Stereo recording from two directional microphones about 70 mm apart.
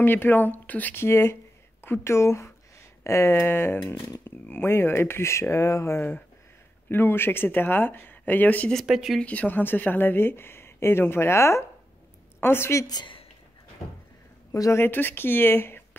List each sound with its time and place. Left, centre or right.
0.0 s speech: left
1.0 s speech: left
6.9 s speech: left
8.8 s speech: centre
9.2 s speech: left
12.8 s a woman's voice: left
14.5 s speech: left
14.8 s speech: left